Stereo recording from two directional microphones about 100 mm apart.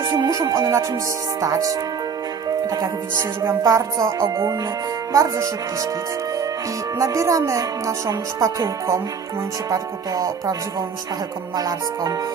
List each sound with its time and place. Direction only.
0.0 s music: 35° right (ahead or behind)
1.4 s a woman's voice: 35° right (ahead or behind)
3.2 s music: 30° right (ahead or behind)
5.1 s a woman's voice: 35° right (ahead or behind)
7.0 s a woman's voice: 35° right (ahead or behind)
11.5 s a woman's voice: 40° right (ahead or behind)